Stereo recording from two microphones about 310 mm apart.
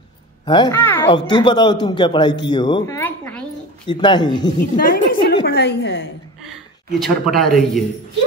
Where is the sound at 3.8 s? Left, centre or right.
Centre.